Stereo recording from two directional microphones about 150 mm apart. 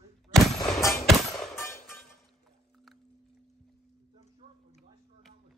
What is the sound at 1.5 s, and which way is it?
Music, 15° left (ahead or behind).